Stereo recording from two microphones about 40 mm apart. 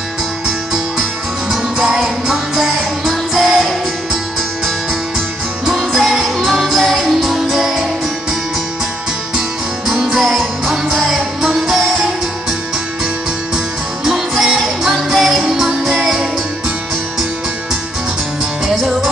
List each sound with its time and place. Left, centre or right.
1.9 s music: centre
2.3 s music: centre
5.9 s music: centre
9.8 s music: centre
14.0 s music: centre